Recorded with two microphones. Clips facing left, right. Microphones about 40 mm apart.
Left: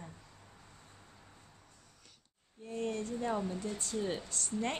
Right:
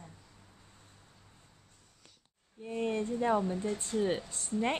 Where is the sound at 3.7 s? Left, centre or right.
Right.